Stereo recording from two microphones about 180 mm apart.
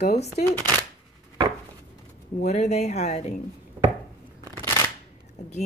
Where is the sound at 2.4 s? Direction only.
40° left (ahead or behind).